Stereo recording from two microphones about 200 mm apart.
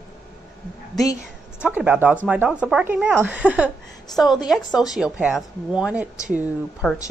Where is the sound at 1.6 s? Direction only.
5° right (ahead or behind).